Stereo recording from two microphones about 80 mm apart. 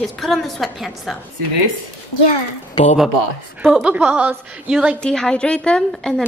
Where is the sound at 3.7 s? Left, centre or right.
Centre.